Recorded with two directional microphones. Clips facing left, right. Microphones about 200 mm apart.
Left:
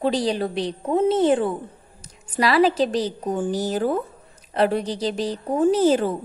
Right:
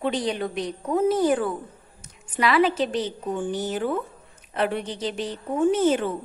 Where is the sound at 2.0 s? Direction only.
35° left (ahead or behind).